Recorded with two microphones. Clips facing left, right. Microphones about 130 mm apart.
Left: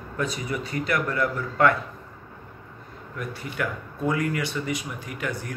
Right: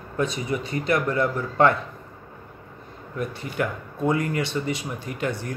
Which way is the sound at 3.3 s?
25° right (ahead or behind).